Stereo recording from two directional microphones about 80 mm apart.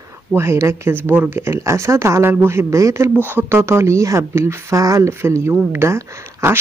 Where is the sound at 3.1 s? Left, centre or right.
Right.